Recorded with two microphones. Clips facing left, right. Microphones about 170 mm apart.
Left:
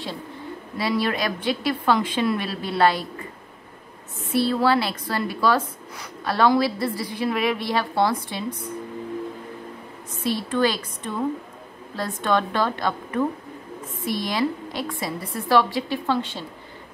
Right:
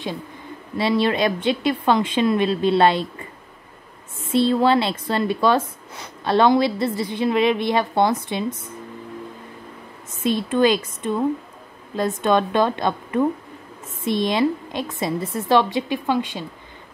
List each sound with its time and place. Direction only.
0.7 s speech: 25° right (ahead or behind)
4.3 s speech: 20° right (ahead or behind)
10.2 s speech: 20° right (ahead or behind)
12.2 s speech: 20° right (ahead or behind)